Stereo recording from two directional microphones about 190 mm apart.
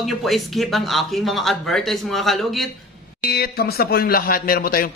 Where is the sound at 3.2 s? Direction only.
55° left (ahead or behind).